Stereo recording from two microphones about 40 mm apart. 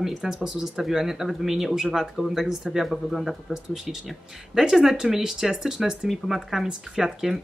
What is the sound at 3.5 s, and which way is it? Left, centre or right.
Speech, centre.